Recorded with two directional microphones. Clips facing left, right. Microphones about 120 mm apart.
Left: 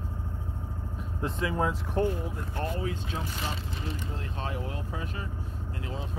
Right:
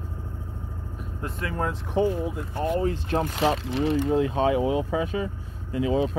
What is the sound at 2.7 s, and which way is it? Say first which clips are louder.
Speech: right 9 dB; 50° right (ahead or behind).